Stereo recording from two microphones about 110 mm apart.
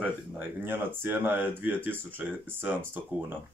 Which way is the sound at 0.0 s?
15° right (ahead or behind).